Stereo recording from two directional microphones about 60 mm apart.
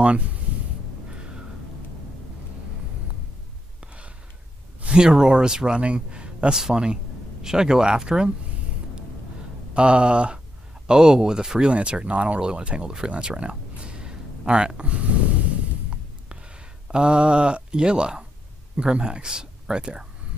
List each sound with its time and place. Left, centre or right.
3.8 s gasp: right
4.8 s speech: centre
9.8 s speech: centre
16.8 s speech: centre